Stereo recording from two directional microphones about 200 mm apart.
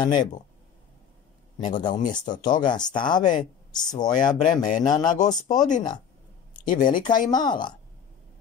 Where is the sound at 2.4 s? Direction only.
20° left (ahead or behind).